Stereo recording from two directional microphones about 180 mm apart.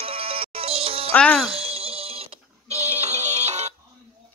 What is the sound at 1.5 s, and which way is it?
Music, 35° right (ahead or behind).